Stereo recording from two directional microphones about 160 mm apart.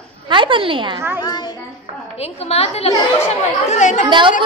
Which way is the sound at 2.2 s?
40° left (ahead or behind).